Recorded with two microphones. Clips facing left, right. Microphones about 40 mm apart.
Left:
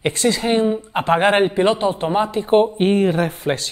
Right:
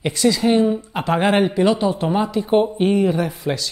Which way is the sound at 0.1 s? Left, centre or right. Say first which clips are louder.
Right 5 dB; left.